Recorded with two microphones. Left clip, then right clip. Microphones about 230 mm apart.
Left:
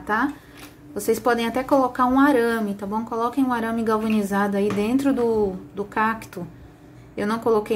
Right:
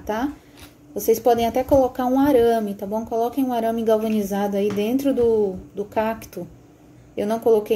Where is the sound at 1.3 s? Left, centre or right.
Centre.